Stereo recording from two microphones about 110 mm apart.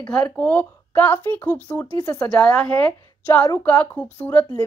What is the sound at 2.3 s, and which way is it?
A woman's voice, 10° left (ahead or behind).